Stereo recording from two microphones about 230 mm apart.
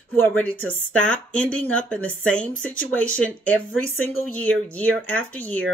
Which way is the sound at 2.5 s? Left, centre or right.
Left.